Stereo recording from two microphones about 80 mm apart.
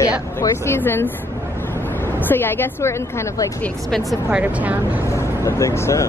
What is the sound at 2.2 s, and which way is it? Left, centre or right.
A woman's voice, left.